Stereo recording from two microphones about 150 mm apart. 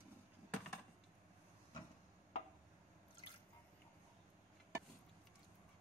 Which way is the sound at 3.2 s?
35° left (ahead or behind).